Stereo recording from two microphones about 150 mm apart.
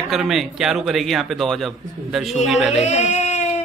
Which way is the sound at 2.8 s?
50° left (ahead or behind).